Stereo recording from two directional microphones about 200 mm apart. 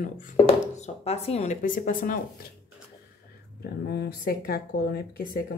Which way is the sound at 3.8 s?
55° left (ahead or behind).